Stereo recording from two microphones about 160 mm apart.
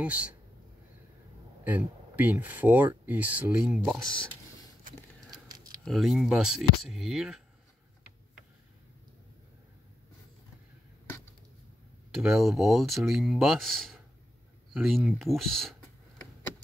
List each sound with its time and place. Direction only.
0.0 s speech: 10° right (ahead or behind)
1.6 s speech: 10° right (ahead or behind)
4.6 s a sound: 25° left (ahead or behind)
5.9 s speech: centre (ahead or behind)
12.1 s speech: 5° right (ahead or behind)